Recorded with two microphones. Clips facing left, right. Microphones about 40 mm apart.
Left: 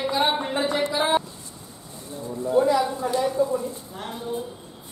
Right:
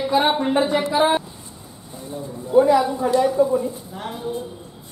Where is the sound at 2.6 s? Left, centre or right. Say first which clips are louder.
Right 6 dB; centre.